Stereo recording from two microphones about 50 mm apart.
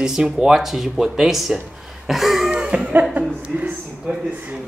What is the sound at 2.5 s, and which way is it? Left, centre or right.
Cough, centre.